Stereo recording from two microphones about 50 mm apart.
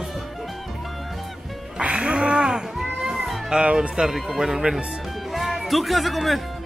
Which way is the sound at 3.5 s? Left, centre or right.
Centre.